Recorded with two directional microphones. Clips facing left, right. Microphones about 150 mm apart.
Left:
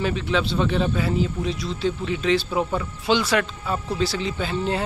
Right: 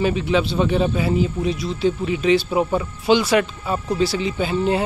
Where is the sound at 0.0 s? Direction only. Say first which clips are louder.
Right 4 dB; 10° right (ahead or behind).